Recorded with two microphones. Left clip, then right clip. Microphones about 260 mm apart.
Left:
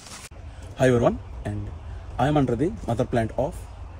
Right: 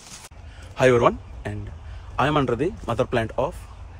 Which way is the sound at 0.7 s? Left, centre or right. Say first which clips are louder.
Right 3 dB; right.